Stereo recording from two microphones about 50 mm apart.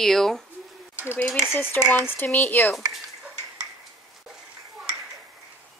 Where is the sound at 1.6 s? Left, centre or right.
Left.